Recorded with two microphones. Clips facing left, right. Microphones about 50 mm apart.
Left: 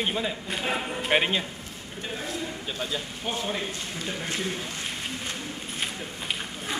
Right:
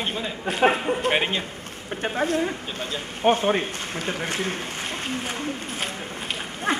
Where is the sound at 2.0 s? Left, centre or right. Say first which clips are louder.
Right 10 dB; right.